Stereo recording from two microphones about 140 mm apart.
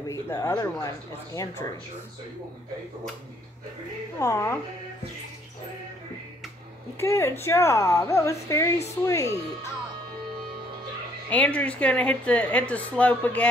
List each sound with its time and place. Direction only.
0.1 s a woman's voice: 20° left (ahead or behind)
4.2 s a woman's voice: 20° left (ahead or behind)
7.0 s a woman's voice: 20° left (ahead or behind)
11.2 s a woman's voice: 10° left (ahead or behind)